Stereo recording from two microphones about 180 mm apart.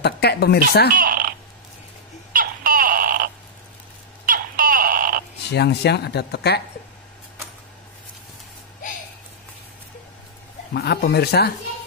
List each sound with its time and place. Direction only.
0.0 s speech: 65° left (ahead or behind)
0.9 s frog: 50° right (ahead or behind)
2.3 s a sound: 50° right (ahead or behind)
4.3 s frog: 50° right (ahead or behind)
5.5 s speech: 65° left (ahead or behind)
10.7 s speech: 65° left (ahead or behind)